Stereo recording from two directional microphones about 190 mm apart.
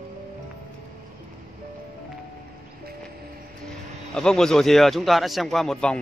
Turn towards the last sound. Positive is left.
turn(degrees=5)  # may be behind; listen again after turning